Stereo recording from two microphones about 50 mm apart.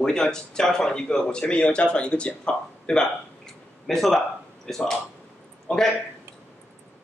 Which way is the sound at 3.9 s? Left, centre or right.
Centre.